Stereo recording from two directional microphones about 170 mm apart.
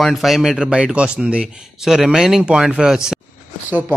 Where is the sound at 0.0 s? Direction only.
Centre (ahead or behind).